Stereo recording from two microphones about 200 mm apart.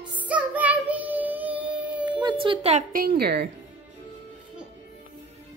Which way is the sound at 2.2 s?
25° right (ahead or behind).